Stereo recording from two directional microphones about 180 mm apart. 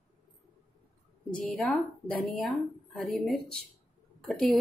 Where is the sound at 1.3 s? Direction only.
5° left (ahead or behind).